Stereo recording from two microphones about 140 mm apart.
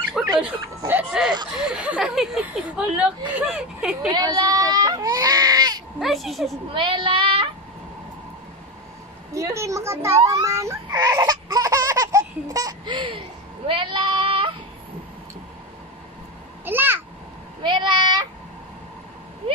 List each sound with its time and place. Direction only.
0.2 s a sound: 5° right (ahead or behind)
1.6 s speech: 5° right (ahead or behind)
4.1 s goat: 30° right (ahead or behind)
5.9 s speech: centre (ahead or behind)
6.7 s a child's voice: 35° right (ahead or behind)
9.3 s a woman's voice: 20° right (ahead or behind)
10.2 s baby cry: 25° right (ahead or behind)
13.7 s child singing: 35° right (ahead or behind)
16.6 s babbling: 15° right (ahead or behind)
17.6 s a child's voice: 35° right (ahead or behind)